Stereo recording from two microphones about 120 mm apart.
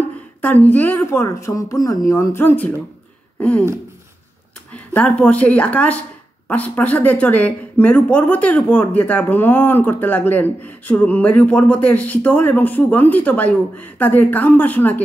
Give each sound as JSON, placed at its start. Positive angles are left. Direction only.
{"t": 0.4, "sound": "a woman's voice", "side_deg": 15}
{"t": 4.7, "sound": "speech", "side_deg": 10}